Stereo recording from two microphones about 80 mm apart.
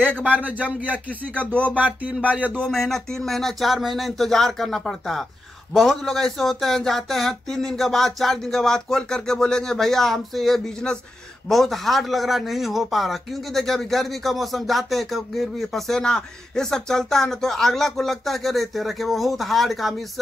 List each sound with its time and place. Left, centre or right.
0.4 s speech: centre
1.3 s speech: centre
2.7 s a man's voice: centre